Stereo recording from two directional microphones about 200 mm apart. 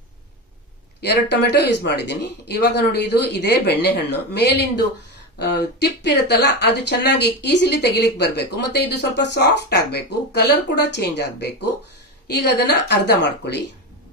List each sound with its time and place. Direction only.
1.0 s speech: 55° left (ahead or behind)